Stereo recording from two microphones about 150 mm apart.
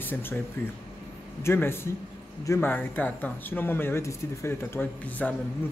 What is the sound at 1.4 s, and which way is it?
A man's voice, 15° left (ahead or behind).